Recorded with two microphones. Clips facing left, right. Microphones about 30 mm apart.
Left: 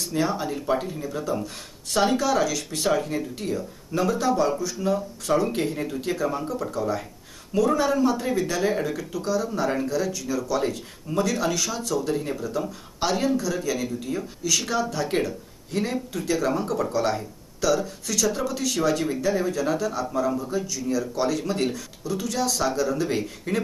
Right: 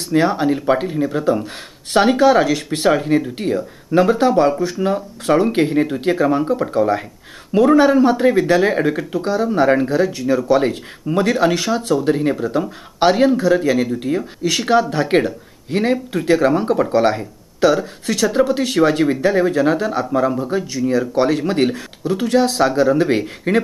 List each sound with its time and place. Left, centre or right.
0.1 s speech: right